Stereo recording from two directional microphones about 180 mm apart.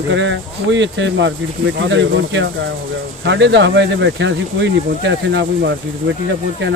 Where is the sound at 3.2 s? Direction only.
75° right (ahead or behind).